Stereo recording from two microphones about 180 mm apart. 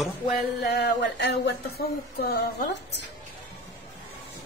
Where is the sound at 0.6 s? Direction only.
65° left (ahead or behind).